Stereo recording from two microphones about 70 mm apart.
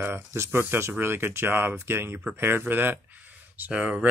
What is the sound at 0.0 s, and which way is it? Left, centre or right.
Speech, right.